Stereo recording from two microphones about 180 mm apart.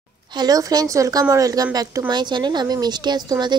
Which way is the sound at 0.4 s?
20° right (ahead or behind).